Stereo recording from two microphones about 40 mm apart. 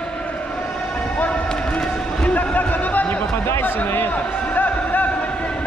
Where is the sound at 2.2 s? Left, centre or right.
Left.